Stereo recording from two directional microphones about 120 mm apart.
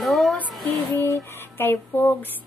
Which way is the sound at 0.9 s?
25° left (ahead or behind).